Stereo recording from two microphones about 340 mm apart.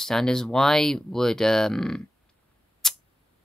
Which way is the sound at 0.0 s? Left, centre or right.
Centre.